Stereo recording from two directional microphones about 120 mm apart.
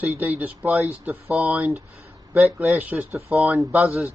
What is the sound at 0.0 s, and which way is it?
Speech, 15° right (ahead or behind).